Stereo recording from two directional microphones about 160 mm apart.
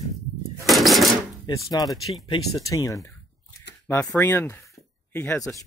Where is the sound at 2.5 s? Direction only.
20° left (ahead or behind).